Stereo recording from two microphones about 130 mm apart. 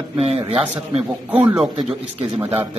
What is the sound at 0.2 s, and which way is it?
Speech, 50° right (ahead or behind).